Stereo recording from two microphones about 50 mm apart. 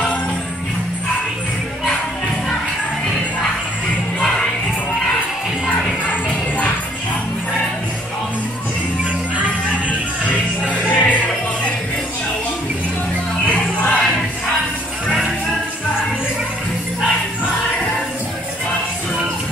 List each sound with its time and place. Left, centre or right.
9.8 s music: left
13.5 s music: left